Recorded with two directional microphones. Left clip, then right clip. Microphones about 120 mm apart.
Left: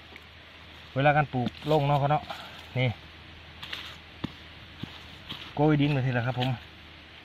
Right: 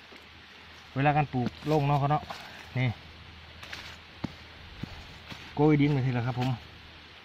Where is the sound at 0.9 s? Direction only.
40° left (ahead or behind).